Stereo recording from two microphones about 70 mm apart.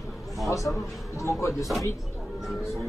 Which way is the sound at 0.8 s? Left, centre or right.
Left.